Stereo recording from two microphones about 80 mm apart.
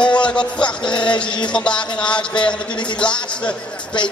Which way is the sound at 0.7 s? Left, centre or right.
Left.